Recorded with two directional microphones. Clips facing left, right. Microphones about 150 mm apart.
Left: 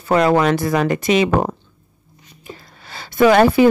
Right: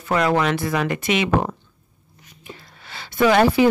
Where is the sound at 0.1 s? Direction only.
35° left (ahead or behind).